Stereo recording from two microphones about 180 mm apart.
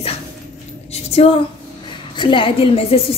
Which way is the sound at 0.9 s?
35° left (ahead or behind).